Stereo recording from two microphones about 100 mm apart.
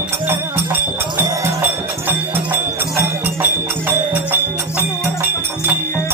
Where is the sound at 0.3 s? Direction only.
25° right (ahead or behind).